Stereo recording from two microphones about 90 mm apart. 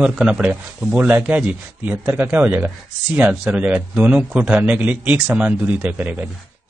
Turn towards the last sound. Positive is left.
turn(degrees=-20)  # may be behind; listen again after turning